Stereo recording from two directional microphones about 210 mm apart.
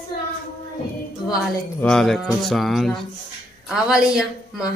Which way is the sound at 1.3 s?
5° left (ahead or behind).